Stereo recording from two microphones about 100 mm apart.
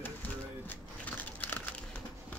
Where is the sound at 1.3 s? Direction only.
15° left (ahead or behind).